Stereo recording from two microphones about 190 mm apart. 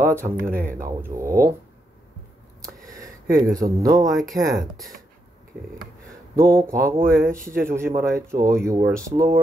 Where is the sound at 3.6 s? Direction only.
20° right (ahead or behind).